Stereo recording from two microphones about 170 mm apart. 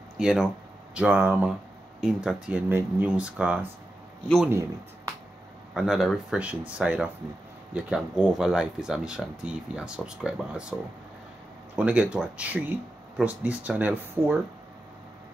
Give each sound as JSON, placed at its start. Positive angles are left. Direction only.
{"t": 0.2, "sound": "speech", "side_deg": -5}
{"t": 5.8, "sound": "speech", "side_deg": 0}